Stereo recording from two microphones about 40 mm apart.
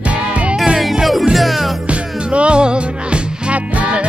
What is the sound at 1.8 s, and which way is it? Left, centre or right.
Music, right.